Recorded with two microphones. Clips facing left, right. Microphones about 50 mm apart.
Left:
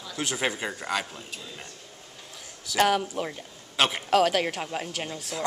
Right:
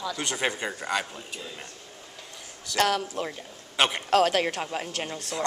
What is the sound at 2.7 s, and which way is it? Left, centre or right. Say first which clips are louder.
Speech: left 2 dB; centre.